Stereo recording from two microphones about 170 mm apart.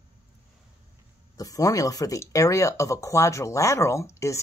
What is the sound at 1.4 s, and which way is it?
Speech, 20° left (ahead or behind).